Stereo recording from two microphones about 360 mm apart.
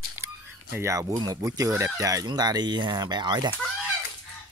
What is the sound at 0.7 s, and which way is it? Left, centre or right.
Speech, centre.